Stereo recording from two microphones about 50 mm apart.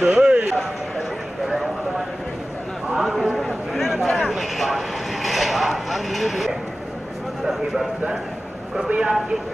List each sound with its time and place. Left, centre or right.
0.0 s speech: right
3.0 s a man's voice: centre
3.4 s a sound: centre
4.3 s vehicle: centre
8.8 s speech: right